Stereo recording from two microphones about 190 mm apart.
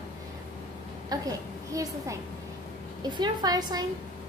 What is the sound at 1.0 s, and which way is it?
A woman's voice, 20° right (ahead or behind).